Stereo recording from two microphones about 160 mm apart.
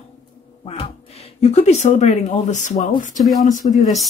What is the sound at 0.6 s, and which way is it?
Speech, 35° left (ahead or behind).